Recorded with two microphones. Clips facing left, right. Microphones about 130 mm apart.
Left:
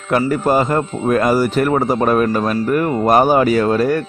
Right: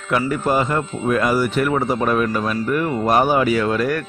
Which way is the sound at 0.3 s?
40° left (ahead or behind).